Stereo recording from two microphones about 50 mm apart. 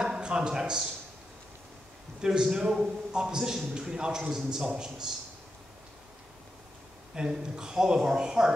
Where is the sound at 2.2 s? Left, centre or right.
Centre.